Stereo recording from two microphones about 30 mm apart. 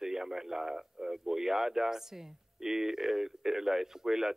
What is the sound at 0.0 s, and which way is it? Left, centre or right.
A man's voice, centre.